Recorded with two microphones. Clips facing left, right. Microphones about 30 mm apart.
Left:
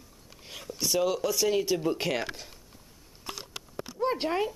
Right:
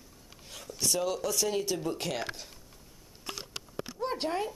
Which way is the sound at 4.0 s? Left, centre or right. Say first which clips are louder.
Left 4 dB; centre.